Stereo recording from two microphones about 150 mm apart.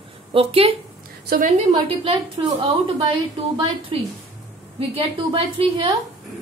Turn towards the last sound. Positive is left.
turn(degrees=-35)  # may be behind; listen again after turning